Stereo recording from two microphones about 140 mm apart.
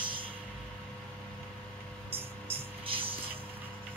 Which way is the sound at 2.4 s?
40° right (ahead or behind).